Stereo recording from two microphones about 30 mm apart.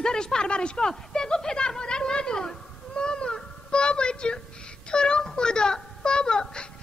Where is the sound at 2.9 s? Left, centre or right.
Left.